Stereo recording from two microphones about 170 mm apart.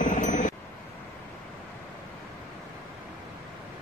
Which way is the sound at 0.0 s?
45° left (ahead or behind).